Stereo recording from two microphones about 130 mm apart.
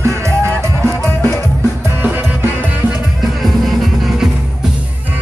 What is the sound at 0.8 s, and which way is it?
Music, 20° left (ahead or behind).